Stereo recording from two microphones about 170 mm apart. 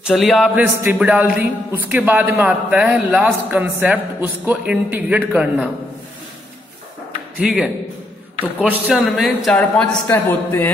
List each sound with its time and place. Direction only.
0.0 s a man's voice: centre (ahead or behind)
7.3 s a man's voice: 5° right (ahead or behind); by 10.7 s 10° left (ahead or behind)